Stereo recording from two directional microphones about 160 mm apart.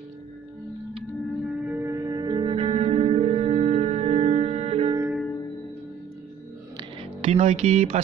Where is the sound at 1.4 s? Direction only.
10° right (ahead or behind); by 5.0 s 35° right (ahead or behind).